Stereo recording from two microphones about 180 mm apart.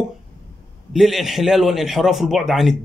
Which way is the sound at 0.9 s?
Centre (ahead or behind).